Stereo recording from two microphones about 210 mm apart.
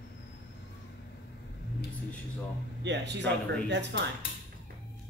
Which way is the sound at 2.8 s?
55° right (ahead or behind).